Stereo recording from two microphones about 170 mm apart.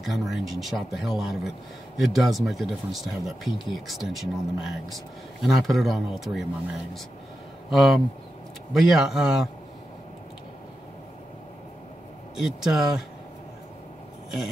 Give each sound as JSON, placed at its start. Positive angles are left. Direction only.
{"t": 0.0, "sound": "speech", "side_deg": 0}
{"t": 7.7, "sound": "speech", "side_deg": 0}
{"t": 12.4, "sound": "speech", "side_deg": 0}